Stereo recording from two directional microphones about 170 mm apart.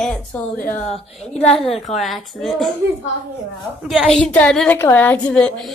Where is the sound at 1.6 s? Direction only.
40° left (ahead or behind).